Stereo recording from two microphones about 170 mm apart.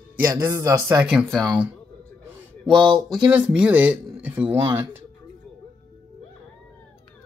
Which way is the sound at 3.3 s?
5° right (ahead or behind).